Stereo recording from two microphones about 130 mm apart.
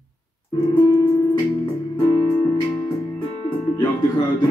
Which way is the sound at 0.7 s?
35° left (ahead or behind).